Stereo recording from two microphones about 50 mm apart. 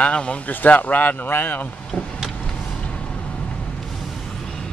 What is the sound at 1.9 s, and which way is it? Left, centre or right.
Vehicle, left.